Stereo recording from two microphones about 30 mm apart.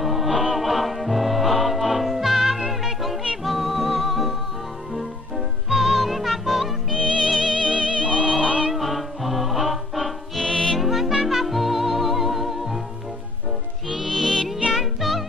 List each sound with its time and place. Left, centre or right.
0.0 s music: centre
5.7 s music: centre
7.0 s music: right
7.2 s music: centre
7.6 s music: right
8.7 s music: centre
10.4 s music: centre
10.8 s music: centre
13.8 s music: centre